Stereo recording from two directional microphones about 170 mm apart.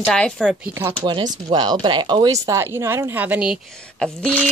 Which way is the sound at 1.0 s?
25° right (ahead or behind).